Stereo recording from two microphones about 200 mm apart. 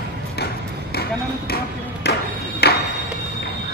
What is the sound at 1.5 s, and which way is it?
Speech, 50° left (ahead or behind).